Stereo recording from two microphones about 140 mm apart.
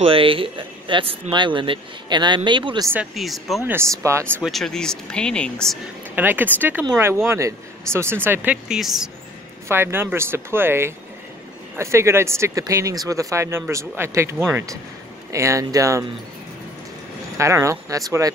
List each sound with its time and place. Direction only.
0.0 s speech: 40° right (ahead or behind)
3.2 s speech: centre (ahead or behind)
3.6 s speech: 20° right (ahead or behind)
4.4 s speech: centre (ahead or behind)
6.1 s speech: 15° right (ahead or behind)
8.6 s speech: centre (ahead or behind)
9.7 s speech: 15° right (ahead or behind)
17.4 s speech: 20° right (ahead or behind)